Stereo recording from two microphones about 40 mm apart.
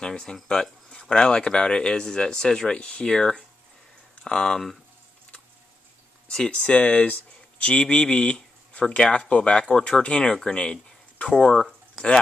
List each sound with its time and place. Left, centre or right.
0.0 s speech: centre
6.5 s speech: left